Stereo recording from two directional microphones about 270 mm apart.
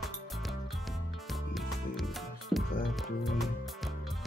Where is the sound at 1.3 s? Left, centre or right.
Centre.